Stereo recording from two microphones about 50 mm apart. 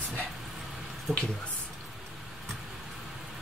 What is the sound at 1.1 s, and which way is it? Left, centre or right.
Speech, centre.